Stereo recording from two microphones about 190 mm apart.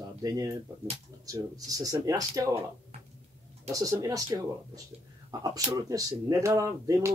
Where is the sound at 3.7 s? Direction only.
20° right (ahead or behind).